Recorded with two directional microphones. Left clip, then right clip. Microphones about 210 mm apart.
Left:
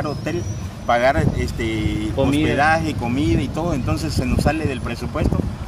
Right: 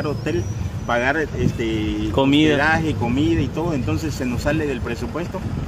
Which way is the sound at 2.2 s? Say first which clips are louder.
Right 3 dB; 50° right (ahead or behind).